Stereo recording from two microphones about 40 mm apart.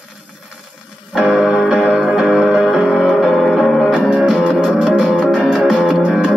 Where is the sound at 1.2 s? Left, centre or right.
Centre.